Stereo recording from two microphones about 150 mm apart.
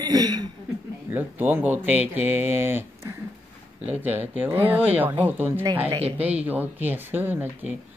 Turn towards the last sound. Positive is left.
turn(degrees=-15)  # may be behind; listen again after turning